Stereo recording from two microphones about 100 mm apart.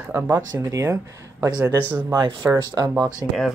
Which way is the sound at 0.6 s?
30° right (ahead or behind).